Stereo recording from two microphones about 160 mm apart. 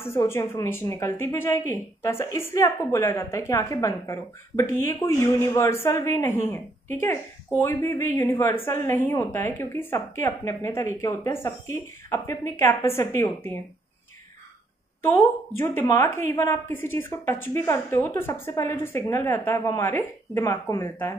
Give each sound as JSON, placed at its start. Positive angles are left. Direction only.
{"t": 0.0, "sound": "a woman's voice", "side_deg": 15}
{"t": 15.0, "sound": "a woman's voice", "side_deg": 15}